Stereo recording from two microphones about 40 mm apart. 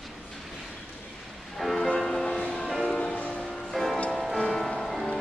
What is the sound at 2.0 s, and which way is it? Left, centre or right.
Music, centre.